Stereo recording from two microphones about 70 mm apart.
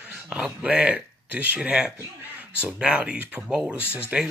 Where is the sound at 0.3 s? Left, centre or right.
Centre.